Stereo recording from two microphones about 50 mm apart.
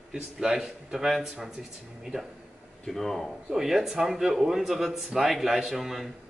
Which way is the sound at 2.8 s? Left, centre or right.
Centre.